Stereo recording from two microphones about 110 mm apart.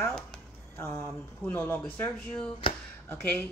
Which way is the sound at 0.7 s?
20° left (ahead or behind).